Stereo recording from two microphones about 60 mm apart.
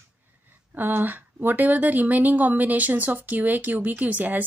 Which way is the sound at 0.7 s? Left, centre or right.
Right.